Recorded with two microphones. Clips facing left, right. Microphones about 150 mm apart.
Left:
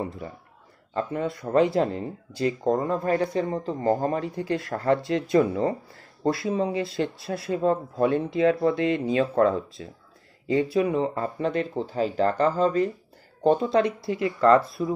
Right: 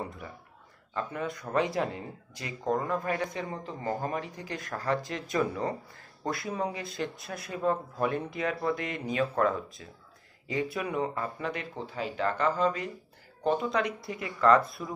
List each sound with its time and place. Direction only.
0.9 s speech: 25° left (ahead or behind)